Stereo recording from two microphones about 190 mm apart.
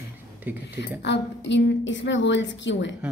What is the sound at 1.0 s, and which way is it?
A woman's voice, 65° left (ahead or behind).